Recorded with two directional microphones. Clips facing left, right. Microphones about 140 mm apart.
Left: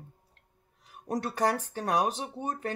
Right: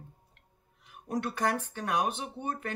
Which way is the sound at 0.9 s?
40° left (ahead or behind).